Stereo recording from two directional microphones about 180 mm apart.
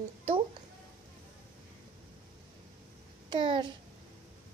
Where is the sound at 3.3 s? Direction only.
25° right (ahead or behind).